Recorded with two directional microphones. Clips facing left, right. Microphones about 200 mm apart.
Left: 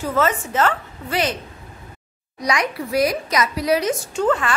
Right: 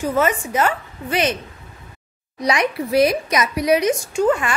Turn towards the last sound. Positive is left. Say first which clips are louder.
# right 2 dB
turn(degrees=-15)  # may be behind; listen again after turning